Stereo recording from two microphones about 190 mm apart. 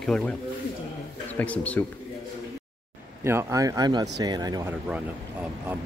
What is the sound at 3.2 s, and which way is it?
Speech, 15° right (ahead or behind).